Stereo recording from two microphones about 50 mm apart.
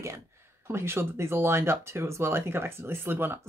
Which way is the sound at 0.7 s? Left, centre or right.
Right.